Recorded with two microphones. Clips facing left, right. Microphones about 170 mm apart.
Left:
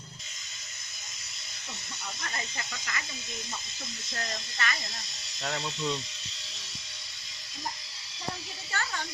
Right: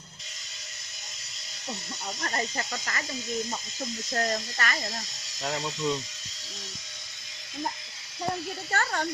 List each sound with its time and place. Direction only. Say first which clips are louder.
2.2 s speech: right 8 dB; 40° right (ahead or behind)
5.4 s speech: right 3 dB; 15° right (ahead or behind)
8.7 s speech: right 6 dB; 50° right (ahead or behind)